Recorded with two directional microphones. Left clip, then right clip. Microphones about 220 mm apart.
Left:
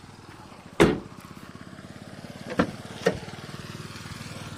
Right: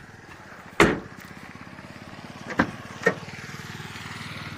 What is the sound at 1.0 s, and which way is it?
Vehicle, 40° left (ahead or behind).